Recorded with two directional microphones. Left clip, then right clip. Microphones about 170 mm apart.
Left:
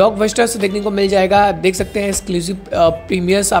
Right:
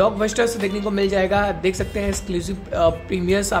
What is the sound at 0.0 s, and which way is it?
Speech, 25° left (ahead or behind).